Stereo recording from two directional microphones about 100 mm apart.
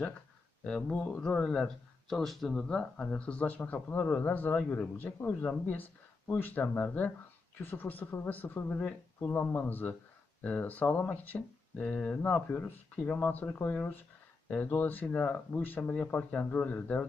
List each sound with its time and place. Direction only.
0.7 s speech: 10° left (ahead or behind)